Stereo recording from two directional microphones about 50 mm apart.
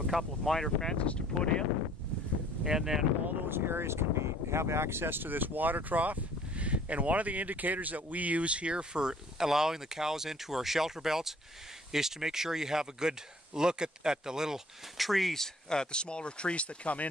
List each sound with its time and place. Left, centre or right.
0.0 s speech: centre
2.6 s speech: centre
3.4 s speech: right; by 14.6 s centre
15.0 s speech: centre; by 17.1 s left